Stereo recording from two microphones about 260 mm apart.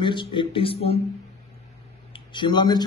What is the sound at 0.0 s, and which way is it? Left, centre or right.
A man's voice, centre.